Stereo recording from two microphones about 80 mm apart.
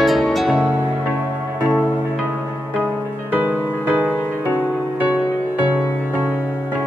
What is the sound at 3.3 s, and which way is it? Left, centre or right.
Music, right.